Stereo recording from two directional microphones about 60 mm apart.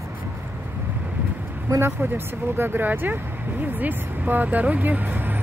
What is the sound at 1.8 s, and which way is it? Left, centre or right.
Speech, right.